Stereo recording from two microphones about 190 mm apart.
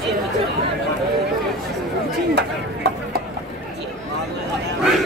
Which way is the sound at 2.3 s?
60° right (ahead or behind).